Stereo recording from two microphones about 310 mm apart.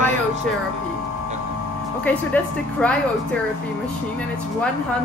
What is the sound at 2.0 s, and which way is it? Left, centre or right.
Speech, centre.